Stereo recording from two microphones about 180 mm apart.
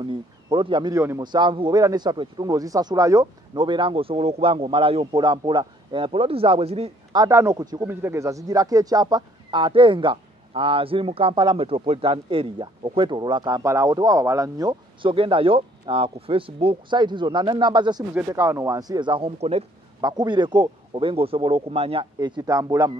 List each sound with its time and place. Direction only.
0.0 s speech: 25° right (ahead or behind)
7.2 s speech: 15° right (ahead or behind)
18.1 s speech: 15° right (ahead or behind)